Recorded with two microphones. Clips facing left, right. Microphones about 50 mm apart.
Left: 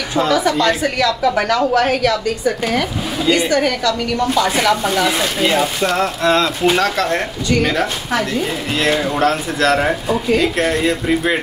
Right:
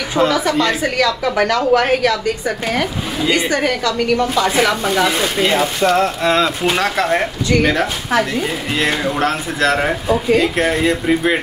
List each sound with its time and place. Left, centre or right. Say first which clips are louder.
0.1 s a woman's voice: even; centre
3.3 s a woman's voice: left 1 dB; right
4.4 s speech: even; centre